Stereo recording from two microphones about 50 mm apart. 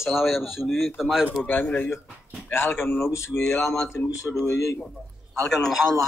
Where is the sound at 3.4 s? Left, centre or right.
Left.